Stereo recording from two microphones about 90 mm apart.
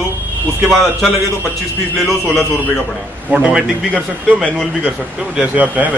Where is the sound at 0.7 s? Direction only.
Centre (ahead or behind).